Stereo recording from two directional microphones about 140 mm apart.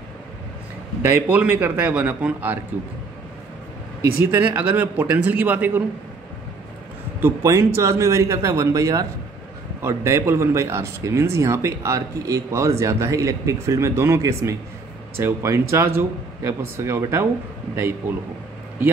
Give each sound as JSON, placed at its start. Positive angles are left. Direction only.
{"t": 1.0, "sound": "speech", "side_deg": -10}
{"t": 4.0, "sound": "speech", "side_deg": -15}
{"t": 7.2, "sound": "speech", "side_deg": -20}